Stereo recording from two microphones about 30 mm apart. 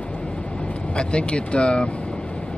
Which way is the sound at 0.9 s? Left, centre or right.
Left.